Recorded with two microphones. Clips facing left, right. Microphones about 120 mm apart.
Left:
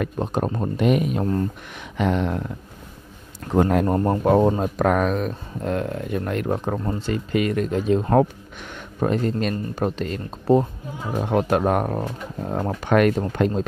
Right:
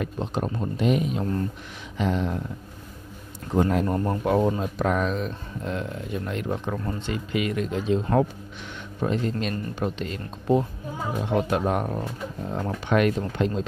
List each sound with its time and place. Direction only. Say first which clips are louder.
0.0 s speech: left 4 dB; 50° left (ahead or behind)
0.7 s a sound: left 3 dB; 60° left (ahead or behind)
3.8 s speech: left 5 dB; 40° left (ahead or behind)